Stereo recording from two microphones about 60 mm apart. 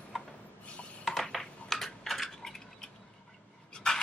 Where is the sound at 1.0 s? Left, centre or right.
Centre.